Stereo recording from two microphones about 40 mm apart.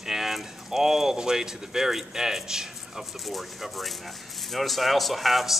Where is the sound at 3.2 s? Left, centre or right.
Centre.